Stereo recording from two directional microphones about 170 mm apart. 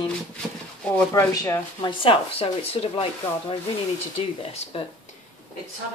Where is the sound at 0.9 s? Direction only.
15° left (ahead or behind); by 3.1 s 35° left (ahead or behind).